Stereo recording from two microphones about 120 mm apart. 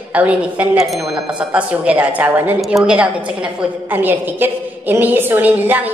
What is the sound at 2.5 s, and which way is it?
A woman's voice, centre (ahead or behind).